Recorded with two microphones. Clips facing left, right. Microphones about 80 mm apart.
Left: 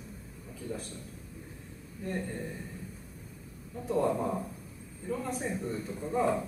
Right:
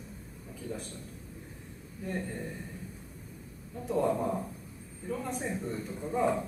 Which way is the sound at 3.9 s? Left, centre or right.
Centre.